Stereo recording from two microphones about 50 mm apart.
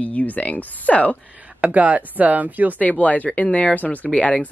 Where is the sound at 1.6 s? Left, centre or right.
Right.